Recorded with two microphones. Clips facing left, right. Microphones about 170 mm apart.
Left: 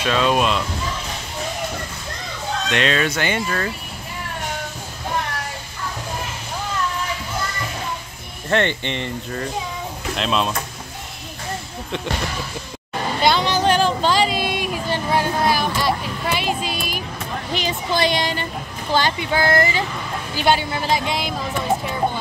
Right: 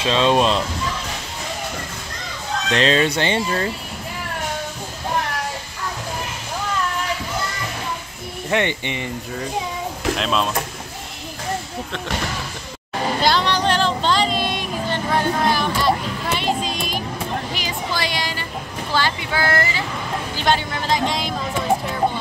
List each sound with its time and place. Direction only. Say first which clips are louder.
0.0 s speech: right 2 dB; 25° right (ahead or behind)
2.7 s speech: right 3 dB; 30° right (ahead or behind)
8.5 s speech: left 1 dB; 15° right (ahead or behind)
10.1 s speech: left 2 dB; centre (ahead or behind)
13.2 s a sound: left 2 dB; 5° left (ahead or behind)
17.6 s a sound: left 4 dB; 25° left (ahead or behind)
20.3 s speech: left 3 dB; 10° left (ahead or behind)